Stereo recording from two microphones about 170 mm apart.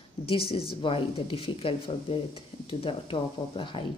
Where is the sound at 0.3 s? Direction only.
35° left (ahead or behind).